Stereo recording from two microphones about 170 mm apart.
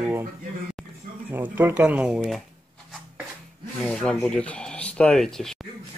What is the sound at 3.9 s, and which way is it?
Speech, 5° left (ahead or behind).